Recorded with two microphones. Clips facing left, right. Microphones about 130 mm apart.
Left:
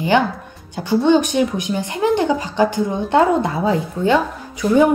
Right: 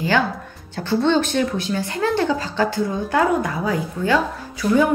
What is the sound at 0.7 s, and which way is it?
Speech, 15° left (ahead or behind).